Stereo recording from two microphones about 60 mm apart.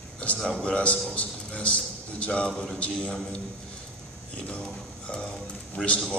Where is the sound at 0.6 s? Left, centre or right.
Centre.